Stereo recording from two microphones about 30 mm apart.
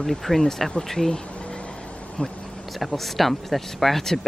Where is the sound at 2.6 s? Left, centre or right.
Centre.